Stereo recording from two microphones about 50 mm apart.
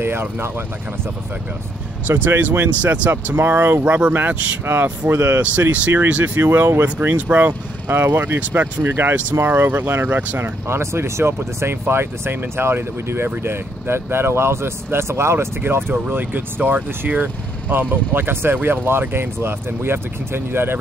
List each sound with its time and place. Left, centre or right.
0.0 s speech: right
2.0 s speech: right
3.3 s speech: right
3.8 s speech: right
4.6 s speech: right
6.2 s speech: right
8.0 s speech: right
8.4 s speech: right
8.8 s speech: right
10.4 s speech: right
16.1 s speech: right
18.1 s speech: right